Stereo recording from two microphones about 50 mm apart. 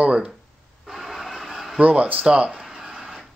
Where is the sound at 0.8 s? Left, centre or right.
Centre.